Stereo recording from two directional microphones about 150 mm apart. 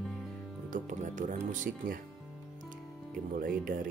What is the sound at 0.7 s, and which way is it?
Speech, 55° right (ahead or behind).